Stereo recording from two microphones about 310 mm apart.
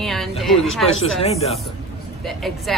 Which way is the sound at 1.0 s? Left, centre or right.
Centre.